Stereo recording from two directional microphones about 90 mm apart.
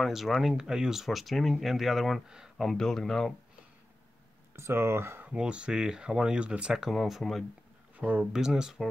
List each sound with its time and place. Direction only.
0.0 s speech: centre (ahead or behind)
4.6 s speech: 30° right (ahead or behind)
5.3 s speech: 10° right (ahead or behind)
8.0 s speech: 15° right (ahead or behind)